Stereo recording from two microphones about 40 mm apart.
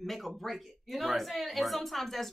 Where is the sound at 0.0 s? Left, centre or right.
Centre.